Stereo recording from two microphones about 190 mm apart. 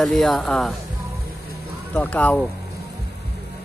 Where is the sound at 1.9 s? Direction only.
10° left (ahead or behind).